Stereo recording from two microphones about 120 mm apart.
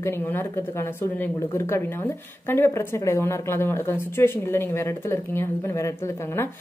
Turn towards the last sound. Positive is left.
turn(degrees=25)  # may be behind; listen again after turning